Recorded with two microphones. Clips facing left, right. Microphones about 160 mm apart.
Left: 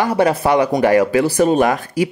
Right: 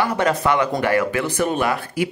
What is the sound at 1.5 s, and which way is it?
Speech, 40° left (ahead or behind).